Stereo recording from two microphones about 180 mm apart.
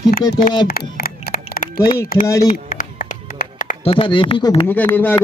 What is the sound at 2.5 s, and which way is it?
Music, 45° left (ahead or behind).